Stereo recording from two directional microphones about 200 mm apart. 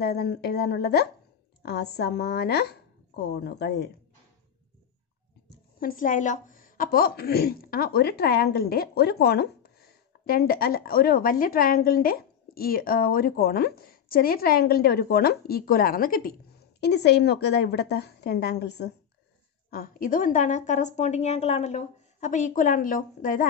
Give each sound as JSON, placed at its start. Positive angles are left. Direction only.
{"t": 0.0, "sound": "a woman's voice", "side_deg": 55}
{"t": 5.8, "sound": "a woman's voice", "side_deg": 45}
{"t": 16.8, "sound": "a woman's voice", "side_deg": 55}